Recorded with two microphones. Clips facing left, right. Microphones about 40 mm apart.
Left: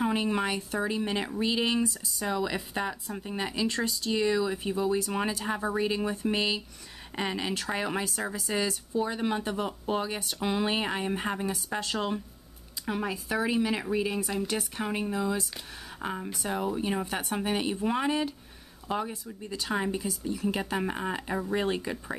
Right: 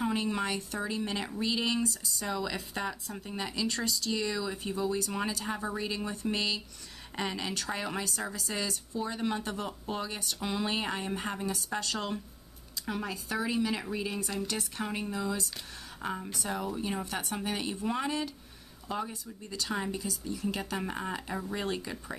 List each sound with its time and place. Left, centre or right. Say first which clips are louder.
0.0 s speech: left 3 dB; centre